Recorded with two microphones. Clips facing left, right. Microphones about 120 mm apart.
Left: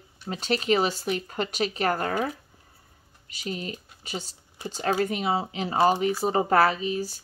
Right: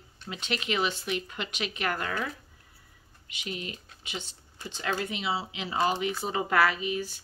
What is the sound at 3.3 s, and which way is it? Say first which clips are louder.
Speech: left 4 dB; 40° left (ahead or behind).